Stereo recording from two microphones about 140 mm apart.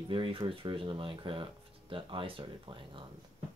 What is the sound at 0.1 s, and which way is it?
Speech, 40° right (ahead or behind).